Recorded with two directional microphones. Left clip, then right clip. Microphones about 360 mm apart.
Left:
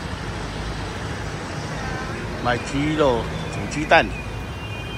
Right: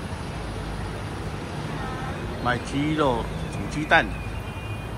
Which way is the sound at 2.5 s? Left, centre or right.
Centre.